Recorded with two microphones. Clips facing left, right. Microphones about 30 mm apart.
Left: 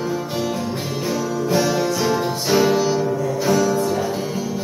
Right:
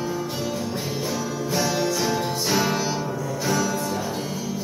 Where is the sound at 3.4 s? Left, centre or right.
Centre.